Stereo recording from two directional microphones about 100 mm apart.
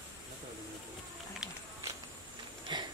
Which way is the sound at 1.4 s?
5° right (ahead or behind).